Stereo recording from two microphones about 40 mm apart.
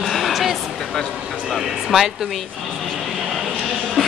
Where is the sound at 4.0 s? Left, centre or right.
Centre.